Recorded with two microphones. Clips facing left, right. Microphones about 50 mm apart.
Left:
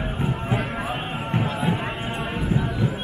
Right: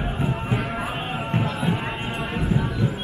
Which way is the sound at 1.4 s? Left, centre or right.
Centre.